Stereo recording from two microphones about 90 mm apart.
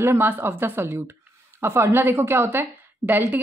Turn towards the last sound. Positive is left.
turn(degrees=-20)  # may be behind; listen again after turning